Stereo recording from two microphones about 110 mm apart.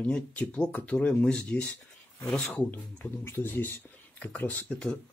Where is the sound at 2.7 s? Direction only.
20° left (ahead or behind).